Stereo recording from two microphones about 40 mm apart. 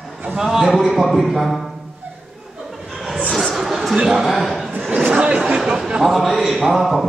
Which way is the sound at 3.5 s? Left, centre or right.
Centre.